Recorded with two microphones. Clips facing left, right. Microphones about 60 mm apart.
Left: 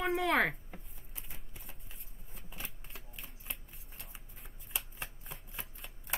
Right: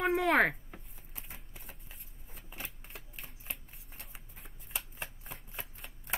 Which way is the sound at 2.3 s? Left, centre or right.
Centre.